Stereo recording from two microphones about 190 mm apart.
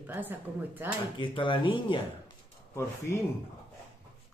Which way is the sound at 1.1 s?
25° left (ahead or behind).